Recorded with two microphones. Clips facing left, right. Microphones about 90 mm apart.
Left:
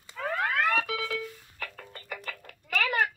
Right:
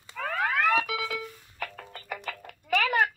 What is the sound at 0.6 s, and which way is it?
Music, 15° right (ahead or behind).